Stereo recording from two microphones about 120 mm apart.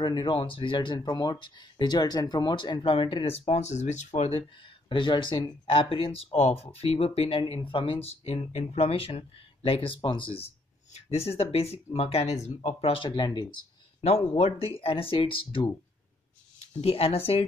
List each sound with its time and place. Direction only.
0.0 s speech: 35° left (ahead or behind); by 4.3 s 80° left
4.3 s speech: 45° left (ahead or behind)
14.4 s speech: 55° left (ahead or behind)
16.5 s speech: 60° left (ahead or behind)